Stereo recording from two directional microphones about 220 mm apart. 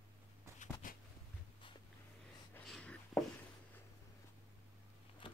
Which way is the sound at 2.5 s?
5° left (ahead or behind).